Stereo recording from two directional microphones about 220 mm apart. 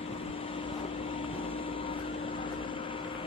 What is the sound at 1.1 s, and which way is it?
Vehicle, 25° left (ahead or behind).